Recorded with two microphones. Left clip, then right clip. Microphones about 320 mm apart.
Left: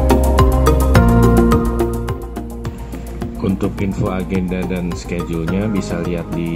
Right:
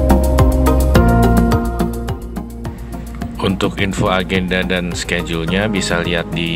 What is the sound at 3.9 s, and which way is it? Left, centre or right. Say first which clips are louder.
Speech: right 5 dB; right.